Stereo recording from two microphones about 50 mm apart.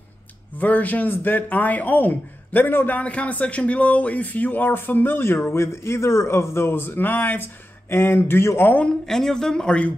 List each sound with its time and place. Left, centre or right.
0.6 s speech: left
3.0 s speech: left
7.9 s a man's voice: left
8.8 s speech: centre